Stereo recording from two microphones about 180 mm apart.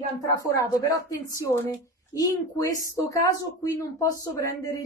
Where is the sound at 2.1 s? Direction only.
20° left (ahead or behind).